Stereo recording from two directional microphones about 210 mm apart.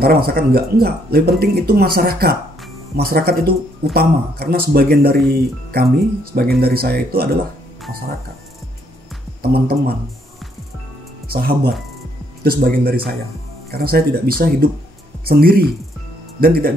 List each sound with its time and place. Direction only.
0.0 s speech: 45° right (ahead or behind)
9.4 s speech: 45° right (ahead or behind)
11.3 s speech: 45° right (ahead or behind)